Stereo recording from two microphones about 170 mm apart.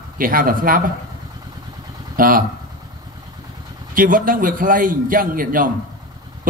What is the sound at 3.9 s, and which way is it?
A man's voice, 55° right (ahead or behind).